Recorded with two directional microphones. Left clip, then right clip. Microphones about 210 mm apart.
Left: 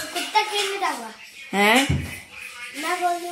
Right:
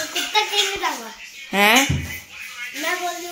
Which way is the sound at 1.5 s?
15° right (ahead or behind).